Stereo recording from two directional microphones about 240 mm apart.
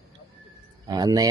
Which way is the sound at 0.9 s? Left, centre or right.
Centre.